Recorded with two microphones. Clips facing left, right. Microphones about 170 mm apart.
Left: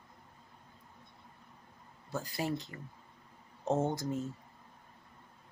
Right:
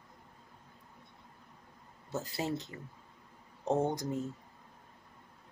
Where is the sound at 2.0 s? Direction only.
20° right (ahead or behind).